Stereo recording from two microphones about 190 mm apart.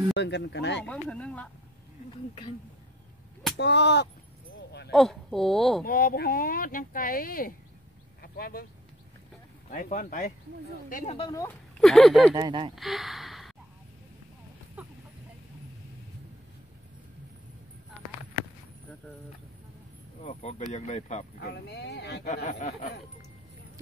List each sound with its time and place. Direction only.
0.1 s speech: 65° left (ahead or behind)
0.8 s speech: 5° left (ahead or behind)
3.5 s speech: 65° left (ahead or behind)
4.9 s speech: centre (ahead or behind)
5.9 s speech: 50° left (ahead or behind)
8.2 s a sound: 55° left (ahead or behind)
9.7 s speech: 45° left (ahead or behind)
11.1 s speech: 20° left (ahead or behind)
11.8 s speech: centre (ahead or behind)
12.4 s speech: 25° right (ahead or behind)
12.7 s speech: centre (ahead or behind)
20.2 s speech: 35° left (ahead or behind)
21.4 s speech: 60° left (ahead or behind)
22.3 s speech: 40° left (ahead or behind)